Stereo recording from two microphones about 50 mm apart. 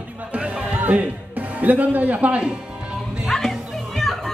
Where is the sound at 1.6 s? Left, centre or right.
Right.